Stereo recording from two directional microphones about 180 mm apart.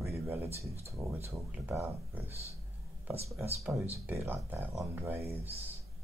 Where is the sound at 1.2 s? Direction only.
10° right (ahead or behind).